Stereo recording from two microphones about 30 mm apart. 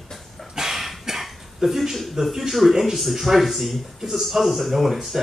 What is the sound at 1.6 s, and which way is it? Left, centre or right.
Speech, centre.